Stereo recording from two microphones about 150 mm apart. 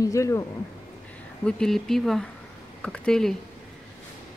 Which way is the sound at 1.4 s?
5° left (ahead or behind).